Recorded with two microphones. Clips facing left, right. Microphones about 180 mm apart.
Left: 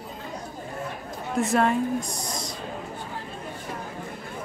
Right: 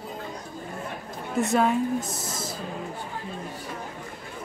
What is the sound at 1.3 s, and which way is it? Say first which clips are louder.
Speech: even; centre (ahead or behind).